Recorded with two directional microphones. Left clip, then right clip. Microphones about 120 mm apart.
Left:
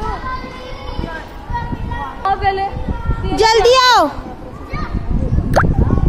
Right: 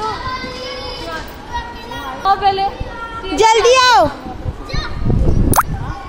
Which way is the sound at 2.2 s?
25° left (ahead or behind).